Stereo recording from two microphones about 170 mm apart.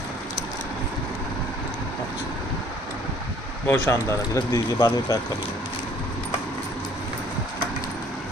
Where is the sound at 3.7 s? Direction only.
15° left (ahead or behind).